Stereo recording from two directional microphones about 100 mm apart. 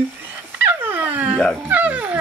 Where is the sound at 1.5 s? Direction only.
20° right (ahead or behind).